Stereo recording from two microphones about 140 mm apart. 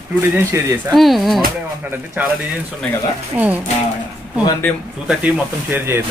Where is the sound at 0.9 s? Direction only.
Centre (ahead or behind).